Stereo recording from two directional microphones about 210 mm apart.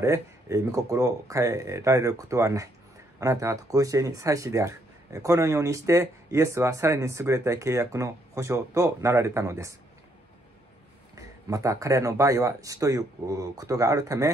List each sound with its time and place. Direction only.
0.0 s speech: 15° right (ahead or behind)
11.1 s speech: 15° right (ahead or behind)